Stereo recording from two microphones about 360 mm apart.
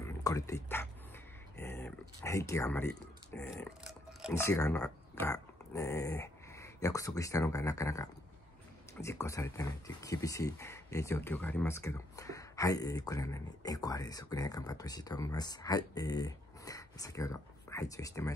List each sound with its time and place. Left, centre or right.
0.0 s speech: centre